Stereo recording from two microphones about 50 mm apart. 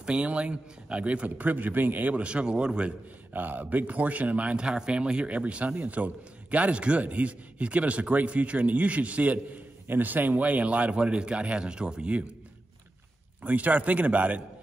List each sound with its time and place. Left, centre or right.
0.0 s speech: right
2.2 s speech: right
3.3 s speech: right
13.4 s a man's voice: right